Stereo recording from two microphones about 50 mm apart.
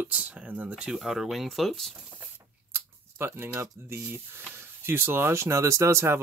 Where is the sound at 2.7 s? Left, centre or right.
Right.